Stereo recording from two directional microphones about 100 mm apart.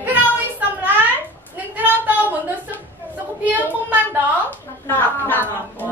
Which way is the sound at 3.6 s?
15° right (ahead or behind).